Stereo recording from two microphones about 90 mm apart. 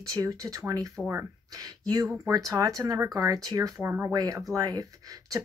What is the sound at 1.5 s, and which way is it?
Speech, 45° right (ahead or behind).